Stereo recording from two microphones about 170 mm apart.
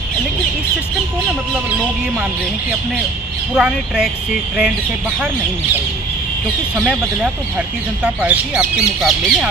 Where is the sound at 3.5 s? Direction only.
5° right (ahead or behind).